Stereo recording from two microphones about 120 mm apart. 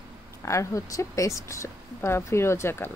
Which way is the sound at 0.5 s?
25° left (ahead or behind).